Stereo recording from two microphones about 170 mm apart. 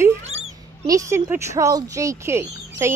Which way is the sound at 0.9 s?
20° right (ahead or behind).